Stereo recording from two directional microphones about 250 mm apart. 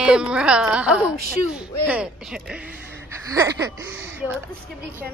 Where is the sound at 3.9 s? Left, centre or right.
Right.